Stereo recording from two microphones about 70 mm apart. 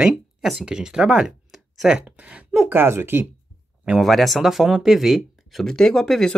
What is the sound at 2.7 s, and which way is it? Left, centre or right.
Speech, right.